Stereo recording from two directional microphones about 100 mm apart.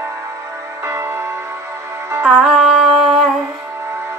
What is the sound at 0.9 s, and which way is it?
Music, 25° right (ahead or behind).